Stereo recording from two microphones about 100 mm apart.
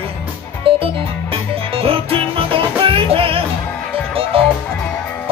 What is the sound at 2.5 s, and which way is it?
Music, 65° right (ahead or behind).